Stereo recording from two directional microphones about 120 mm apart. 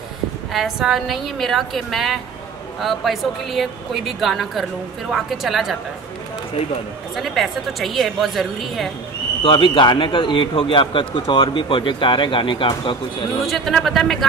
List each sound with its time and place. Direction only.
0.5 s a woman's voice: centre (ahead or behind)
7.2 s a woman's voice: centre (ahead or behind)
9.4 s speech: 45° left (ahead or behind)
13.5 s a woman's voice: centre (ahead or behind)